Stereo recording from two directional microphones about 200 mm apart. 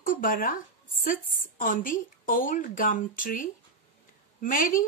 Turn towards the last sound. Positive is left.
turn(degrees=40)  # may be behind; listen again after turning